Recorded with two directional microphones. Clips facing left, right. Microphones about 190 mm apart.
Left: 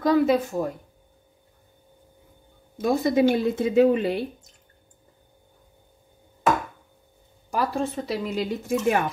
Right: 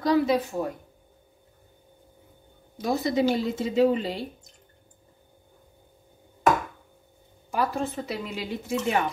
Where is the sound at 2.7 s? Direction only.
55° left (ahead or behind).